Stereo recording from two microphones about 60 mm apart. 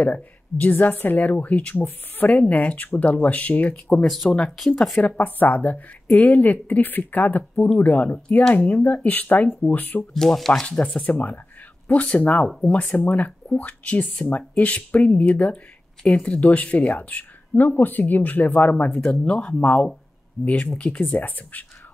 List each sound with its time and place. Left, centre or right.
0.0 s speech: left
4.0 s speech: centre
5.0 s speech: left
10.1 s speech: centre
10.8 s speech: centre
12.4 s speech: centre
12.7 s speech: left
18.9 s speech: centre; by 21.6 s left